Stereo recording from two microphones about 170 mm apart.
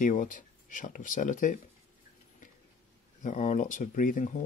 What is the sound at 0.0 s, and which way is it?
Speech, 50° left (ahead or behind).